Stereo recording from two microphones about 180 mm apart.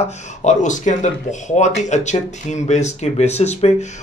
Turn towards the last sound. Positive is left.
turn(degrees=35)  # may be behind; listen again after turning